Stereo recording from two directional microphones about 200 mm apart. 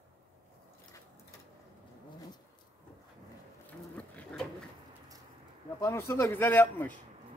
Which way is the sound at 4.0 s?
5° left (ahead or behind).